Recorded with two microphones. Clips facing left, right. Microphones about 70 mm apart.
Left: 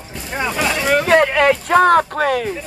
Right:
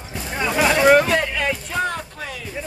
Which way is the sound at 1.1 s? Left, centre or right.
Left.